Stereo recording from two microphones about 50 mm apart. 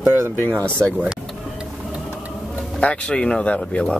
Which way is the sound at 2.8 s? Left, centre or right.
Left.